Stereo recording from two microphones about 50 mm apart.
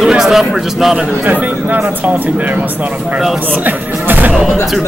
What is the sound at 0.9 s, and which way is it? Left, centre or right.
Speech, right.